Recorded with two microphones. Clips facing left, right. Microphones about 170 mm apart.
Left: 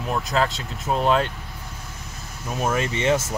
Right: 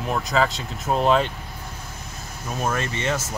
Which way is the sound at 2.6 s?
10° left (ahead or behind).